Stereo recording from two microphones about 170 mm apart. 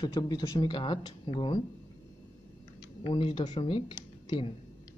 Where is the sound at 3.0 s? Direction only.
30° left (ahead or behind).